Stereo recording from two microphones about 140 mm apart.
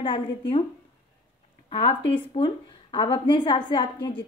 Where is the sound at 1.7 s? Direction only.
40° left (ahead or behind).